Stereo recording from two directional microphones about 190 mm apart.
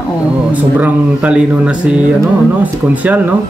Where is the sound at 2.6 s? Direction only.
10° right (ahead or behind).